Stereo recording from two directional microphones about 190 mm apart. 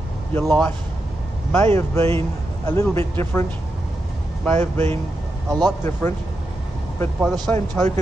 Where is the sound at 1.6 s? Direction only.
15° left (ahead or behind).